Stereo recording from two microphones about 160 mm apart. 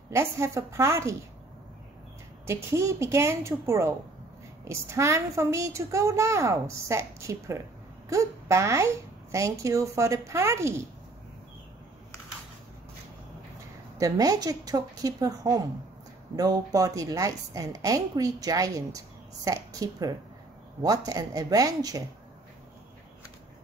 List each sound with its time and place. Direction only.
0.1 s a woman's voice: 15° right (ahead or behind)
2.4 s a woman's voice: 15° right (ahead or behind)
13.9 s a woman's voice: 20° right (ahead or behind)